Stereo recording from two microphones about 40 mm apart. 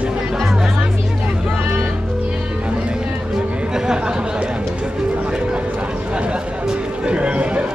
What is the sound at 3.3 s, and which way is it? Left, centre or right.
Chatter, centre.